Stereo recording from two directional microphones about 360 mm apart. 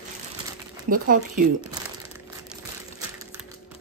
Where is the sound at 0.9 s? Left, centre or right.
Right.